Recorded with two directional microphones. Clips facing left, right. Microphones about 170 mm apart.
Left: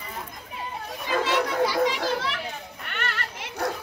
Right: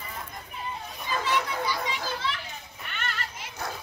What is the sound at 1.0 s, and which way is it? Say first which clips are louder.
Children playing: left 4 dB; 75° left (ahead or behind).